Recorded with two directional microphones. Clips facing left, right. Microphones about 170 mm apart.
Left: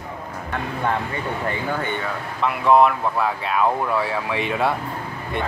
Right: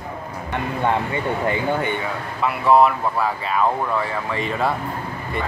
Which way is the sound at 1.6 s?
25° right (ahead or behind).